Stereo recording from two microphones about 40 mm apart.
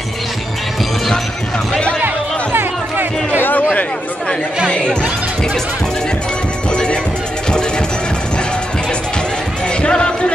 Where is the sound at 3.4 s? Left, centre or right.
Left.